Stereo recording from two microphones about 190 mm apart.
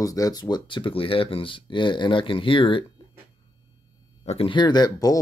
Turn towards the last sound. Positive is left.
turn(degrees=20)  # may be behind; listen again after turning